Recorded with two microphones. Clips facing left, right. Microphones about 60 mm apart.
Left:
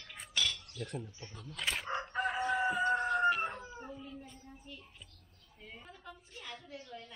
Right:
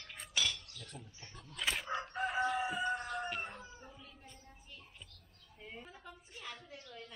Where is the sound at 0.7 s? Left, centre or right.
Left.